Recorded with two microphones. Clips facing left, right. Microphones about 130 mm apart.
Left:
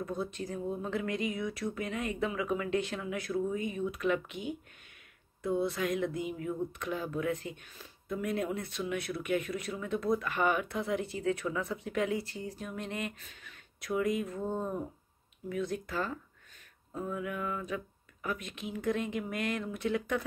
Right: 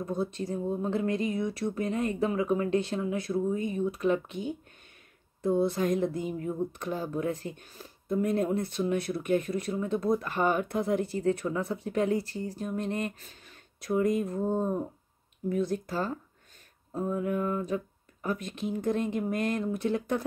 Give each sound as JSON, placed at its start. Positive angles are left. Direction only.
{"t": 0.0, "sound": "speech", "side_deg": -30}